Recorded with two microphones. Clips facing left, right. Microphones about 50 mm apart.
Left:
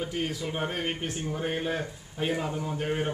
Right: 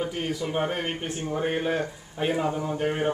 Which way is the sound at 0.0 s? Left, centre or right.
Centre.